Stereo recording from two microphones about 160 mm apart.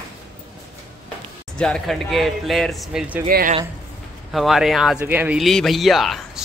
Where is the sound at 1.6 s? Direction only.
5° left (ahead or behind).